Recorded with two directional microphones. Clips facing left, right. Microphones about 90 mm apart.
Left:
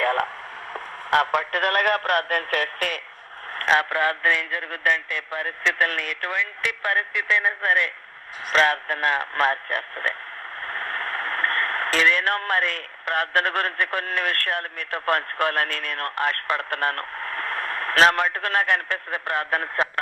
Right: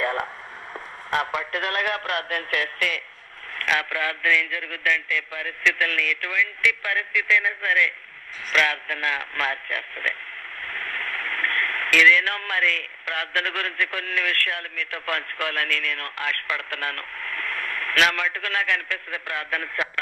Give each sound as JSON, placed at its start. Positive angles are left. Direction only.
{"t": 1.3, "sound": "a man's voice", "side_deg": 50}
{"t": 10.7, "sound": "radio", "side_deg": 35}
{"t": 12.2, "sound": "a man's voice", "side_deg": 50}
{"t": 18.1, "sound": "a man's voice", "side_deg": 50}